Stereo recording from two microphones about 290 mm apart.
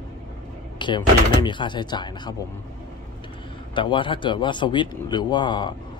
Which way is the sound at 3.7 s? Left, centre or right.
Centre.